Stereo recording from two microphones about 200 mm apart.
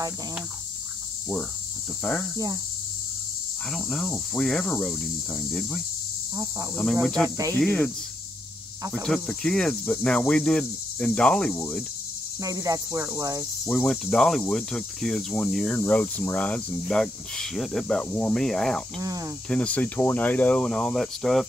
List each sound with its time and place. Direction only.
2.3 s speech: 20° right (ahead or behind)
3.7 s cricket: centre (ahead or behind)
6.3 s cricket: 15° right (ahead or behind)
6.8 s cricket: 5° left (ahead or behind)
7.2 s cricket: 15° right (ahead or behind)
7.5 s speech: 5° left (ahead or behind)
9.0 s cricket: 5° left (ahead or behind)
12.4 s cricket: 15° right (ahead or behind)
13.7 s cricket: centre (ahead or behind)
18.9 s cricket: 15° right (ahead or behind)
19.5 s cricket: 5° left (ahead or behind)